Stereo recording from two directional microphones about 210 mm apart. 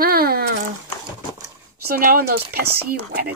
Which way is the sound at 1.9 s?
45° right (ahead or behind).